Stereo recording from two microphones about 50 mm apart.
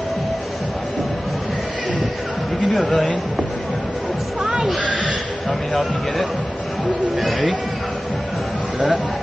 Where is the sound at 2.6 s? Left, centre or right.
Centre.